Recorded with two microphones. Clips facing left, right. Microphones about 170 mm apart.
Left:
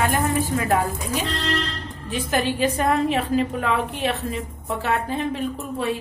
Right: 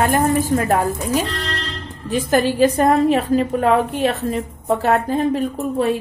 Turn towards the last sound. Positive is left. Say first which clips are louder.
# right 7 dB
turn(degrees=-40)  # may be behind; listen again after turning